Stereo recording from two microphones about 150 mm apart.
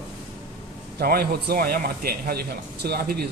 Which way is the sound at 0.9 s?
90° right.